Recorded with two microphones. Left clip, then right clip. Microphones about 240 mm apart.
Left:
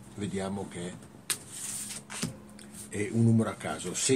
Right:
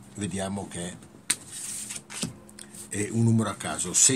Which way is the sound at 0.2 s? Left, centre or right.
Right.